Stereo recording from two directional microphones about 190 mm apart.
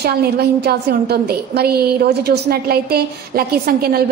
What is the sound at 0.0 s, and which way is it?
A woman's voice, 55° right (ahead or behind).